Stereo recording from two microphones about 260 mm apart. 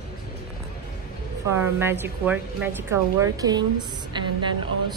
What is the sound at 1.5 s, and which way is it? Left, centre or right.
A woman's voice, centre.